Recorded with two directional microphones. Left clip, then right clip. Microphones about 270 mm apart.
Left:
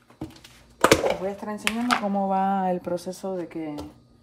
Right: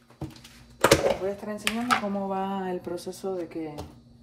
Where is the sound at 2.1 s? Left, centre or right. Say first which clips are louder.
Left 7 dB; left.